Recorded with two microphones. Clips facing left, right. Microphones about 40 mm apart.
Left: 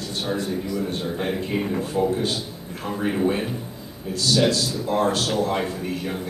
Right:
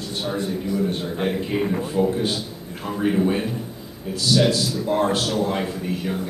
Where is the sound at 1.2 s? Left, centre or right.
Centre.